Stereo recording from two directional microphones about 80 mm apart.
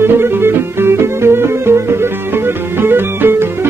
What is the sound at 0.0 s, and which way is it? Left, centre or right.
Music, right.